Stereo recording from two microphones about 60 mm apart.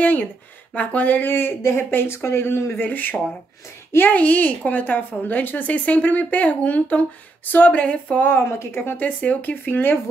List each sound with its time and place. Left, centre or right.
0.0 s a woman's voice: left
7.8 s a woman's voice: centre
8.3 s speech: left
9.0 s a woman's voice: left